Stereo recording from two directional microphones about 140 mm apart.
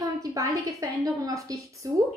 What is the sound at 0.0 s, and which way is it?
A woman's voice, 25° right (ahead or behind).